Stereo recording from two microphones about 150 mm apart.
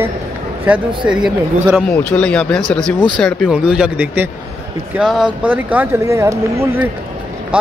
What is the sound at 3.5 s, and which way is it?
Speech, 5° right (ahead or behind).